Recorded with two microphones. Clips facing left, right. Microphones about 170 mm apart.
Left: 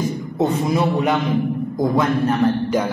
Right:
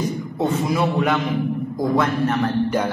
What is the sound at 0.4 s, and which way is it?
A man's voice, 20° left (ahead or behind).